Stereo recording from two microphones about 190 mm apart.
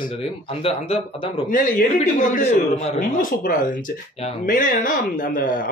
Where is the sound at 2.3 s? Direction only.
35° left (ahead or behind).